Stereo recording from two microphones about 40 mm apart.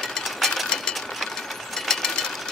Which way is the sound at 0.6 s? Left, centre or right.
Centre.